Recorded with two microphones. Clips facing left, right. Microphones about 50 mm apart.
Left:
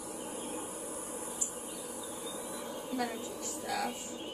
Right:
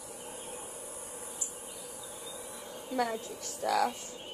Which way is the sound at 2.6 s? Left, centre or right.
Centre.